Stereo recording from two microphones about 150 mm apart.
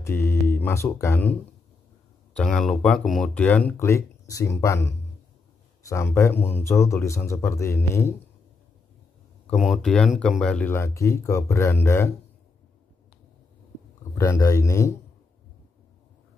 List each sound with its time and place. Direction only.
0.0 s speech: 15° left (ahead or behind)
9.5 s speech: centre (ahead or behind); by 12.1 s 15° left (ahead or behind)
14.1 s speech: 20° left (ahead or behind)